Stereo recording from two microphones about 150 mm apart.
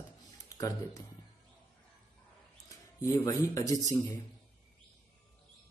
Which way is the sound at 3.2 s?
20° left (ahead or behind).